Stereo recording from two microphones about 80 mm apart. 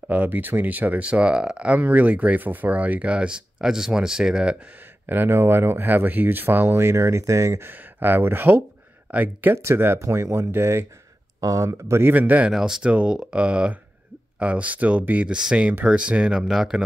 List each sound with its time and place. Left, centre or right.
0.1 s speech: right
5.0 s speech: right
7.7 s speech: right
12.1 s speech: right
12.4 s speech: centre